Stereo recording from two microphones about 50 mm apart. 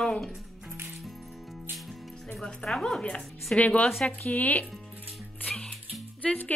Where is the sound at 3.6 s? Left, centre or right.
Left.